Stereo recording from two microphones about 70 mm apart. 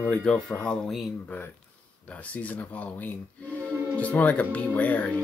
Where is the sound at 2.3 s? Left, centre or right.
Left.